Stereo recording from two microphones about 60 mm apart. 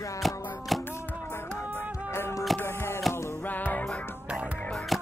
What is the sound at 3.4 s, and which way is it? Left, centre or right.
Music, left.